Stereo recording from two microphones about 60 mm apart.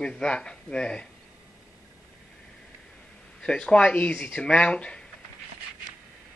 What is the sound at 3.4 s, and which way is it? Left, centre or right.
Speech, centre.